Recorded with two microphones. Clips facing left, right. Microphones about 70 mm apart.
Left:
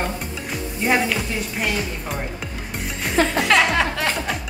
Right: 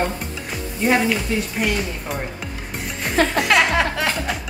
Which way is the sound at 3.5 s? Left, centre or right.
Centre.